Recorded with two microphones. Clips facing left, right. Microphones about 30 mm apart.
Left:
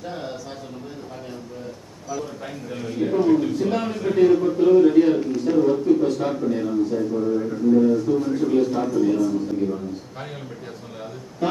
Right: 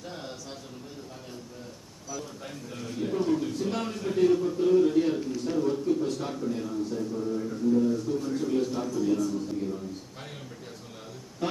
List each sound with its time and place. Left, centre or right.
2.7 s a man's voice: centre
7.2 s speech: left
7.9 s a man's voice: centre